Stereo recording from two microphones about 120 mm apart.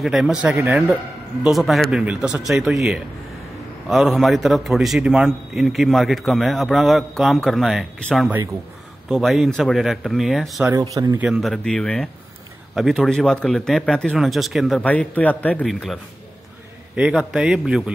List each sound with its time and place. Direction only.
0.0 s a man's voice: 5° right (ahead or behind)
10.8 s speech: 30° right (ahead or behind)
11.1 s a man's voice: 5° right (ahead or behind)
14.8 s a man's voice: 10° left (ahead or behind)
15.6 s a man's voice: centre (ahead or behind)